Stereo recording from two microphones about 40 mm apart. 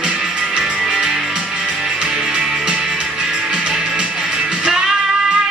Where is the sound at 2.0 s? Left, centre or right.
Right.